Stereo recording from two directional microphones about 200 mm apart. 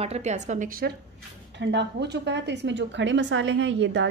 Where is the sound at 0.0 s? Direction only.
35° right (ahead or behind).